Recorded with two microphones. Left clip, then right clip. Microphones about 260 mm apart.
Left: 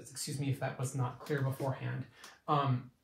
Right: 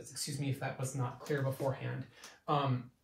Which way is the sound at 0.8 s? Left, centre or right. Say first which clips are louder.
Left 1 dB; centre.